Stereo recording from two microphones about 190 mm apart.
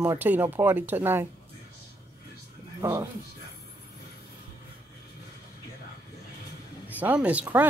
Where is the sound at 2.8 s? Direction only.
15° right (ahead or behind).